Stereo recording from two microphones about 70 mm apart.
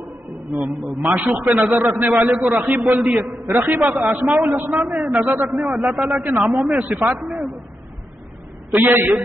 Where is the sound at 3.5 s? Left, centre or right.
Right.